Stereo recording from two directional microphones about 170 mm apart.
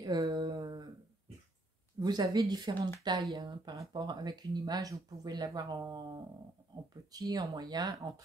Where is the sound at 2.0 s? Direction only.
25° right (ahead or behind).